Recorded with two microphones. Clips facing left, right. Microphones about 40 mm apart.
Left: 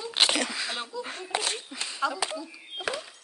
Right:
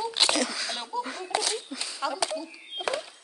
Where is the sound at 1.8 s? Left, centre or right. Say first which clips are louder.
Left 2 dB; left.